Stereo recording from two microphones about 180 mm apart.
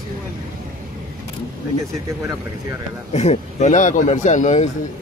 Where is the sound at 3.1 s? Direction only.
35° left (ahead or behind).